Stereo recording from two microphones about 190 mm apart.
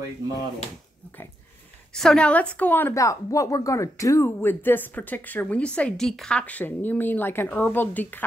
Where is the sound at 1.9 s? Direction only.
5° left (ahead or behind).